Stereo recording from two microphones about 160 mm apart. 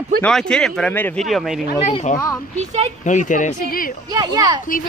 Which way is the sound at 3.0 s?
50° left (ahead or behind).